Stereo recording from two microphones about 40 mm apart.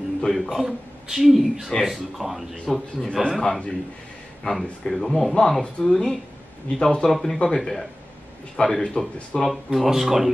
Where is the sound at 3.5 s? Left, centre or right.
Centre.